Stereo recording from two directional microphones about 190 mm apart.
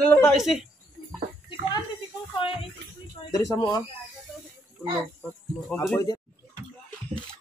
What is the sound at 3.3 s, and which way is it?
Speech, 20° left (ahead or behind).